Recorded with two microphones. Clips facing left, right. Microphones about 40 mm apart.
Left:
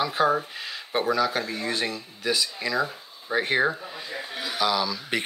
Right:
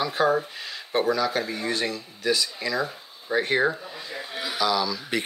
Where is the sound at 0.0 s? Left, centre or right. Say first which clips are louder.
Even; centre.